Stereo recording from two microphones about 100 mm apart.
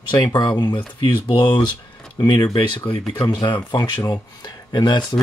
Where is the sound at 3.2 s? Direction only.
35° left (ahead or behind).